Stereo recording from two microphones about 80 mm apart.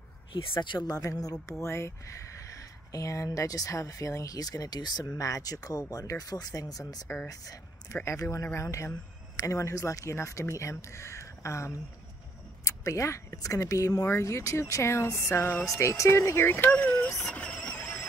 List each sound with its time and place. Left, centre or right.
0.3 s speech: left
0.9 s speech: left
1.6 s speech: left
2.5 s speech: left
5.0 s speech: left; by 17.1 s centre
17.3 s vehicle: centre